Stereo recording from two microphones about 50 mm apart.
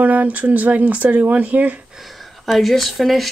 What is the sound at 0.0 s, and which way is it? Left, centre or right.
Speech, right.